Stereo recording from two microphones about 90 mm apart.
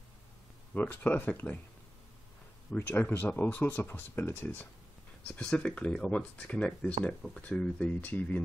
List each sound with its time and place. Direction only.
0.7 s speech: 20° left (ahead or behind)
2.7 s speech: 15° left (ahead or behind)